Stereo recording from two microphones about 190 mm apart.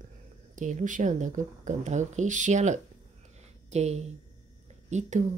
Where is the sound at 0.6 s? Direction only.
40° right (ahead or behind).